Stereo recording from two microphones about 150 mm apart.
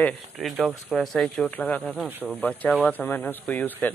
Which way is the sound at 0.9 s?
5° left (ahead or behind).